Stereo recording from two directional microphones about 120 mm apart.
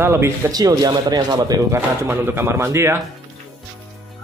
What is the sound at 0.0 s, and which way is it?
Speech, 20° right (ahead or behind).